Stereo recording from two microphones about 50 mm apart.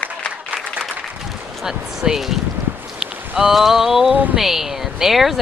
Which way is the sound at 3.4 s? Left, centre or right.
Centre.